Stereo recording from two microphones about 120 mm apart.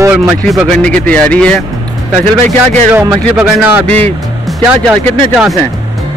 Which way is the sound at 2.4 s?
70° right (ahead or behind).